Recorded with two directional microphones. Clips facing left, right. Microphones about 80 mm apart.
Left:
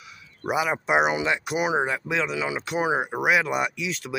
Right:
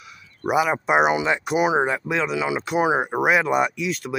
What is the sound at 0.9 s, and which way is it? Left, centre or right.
Speech, right.